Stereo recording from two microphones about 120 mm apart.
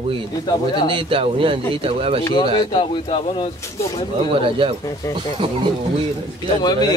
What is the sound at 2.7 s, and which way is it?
Speech, 45° left (ahead or behind).